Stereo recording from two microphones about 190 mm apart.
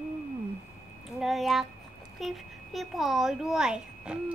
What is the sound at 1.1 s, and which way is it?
A child's voice, centre (ahead or behind).